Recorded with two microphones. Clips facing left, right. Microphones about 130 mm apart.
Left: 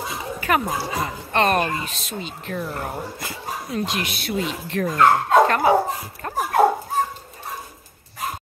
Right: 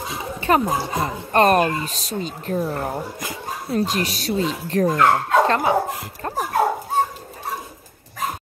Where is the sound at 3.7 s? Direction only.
35° right (ahead or behind).